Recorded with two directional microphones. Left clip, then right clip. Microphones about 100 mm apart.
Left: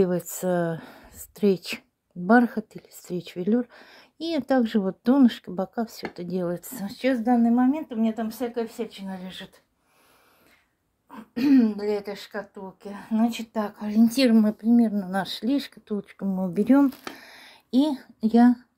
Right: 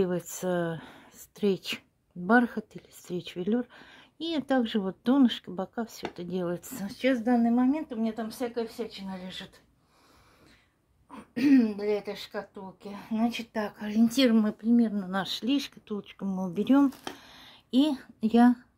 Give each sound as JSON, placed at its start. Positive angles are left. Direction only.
{"t": 0.0, "sound": "speech", "side_deg": 20}
{"t": 11.1, "sound": "speech", "side_deg": 20}
{"t": 12.4, "sound": "speech", "side_deg": 30}
{"t": 13.5, "sound": "speech", "side_deg": 10}
{"t": 13.7, "sound": "speech", "side_deg": 0}
{"t": 17.0, "sound": "a sound", "side_deg": 30}
{"t": 17.7, "sound": "a woman's voice", "side_deg": 5}